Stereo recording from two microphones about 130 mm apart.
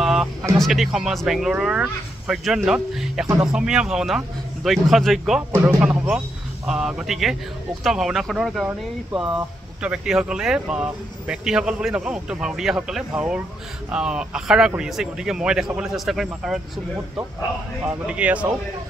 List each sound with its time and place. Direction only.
0.0 s speech: 5° right (ahead or behind)
5.5 s speech: 20° right (ahead or behind)
5.9 s a man's voice: 5° right (ahead or behind)
17.8 s speech: 10° right (ahead or behind)